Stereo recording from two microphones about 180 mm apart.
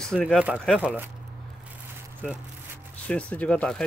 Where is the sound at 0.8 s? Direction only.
10° right (ahead or behind).